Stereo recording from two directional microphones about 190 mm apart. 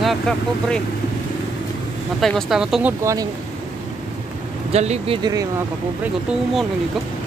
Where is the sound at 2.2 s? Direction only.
Centre (ahead or behind).